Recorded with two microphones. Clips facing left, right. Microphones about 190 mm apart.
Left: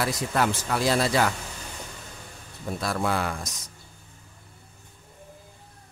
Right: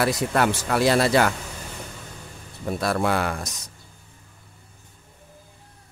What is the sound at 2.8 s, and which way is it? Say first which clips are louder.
Speech: right 4 dB; 65° right (ahead or behind).